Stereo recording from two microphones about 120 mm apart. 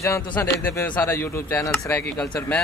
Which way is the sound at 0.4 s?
15° left (ahead or behind).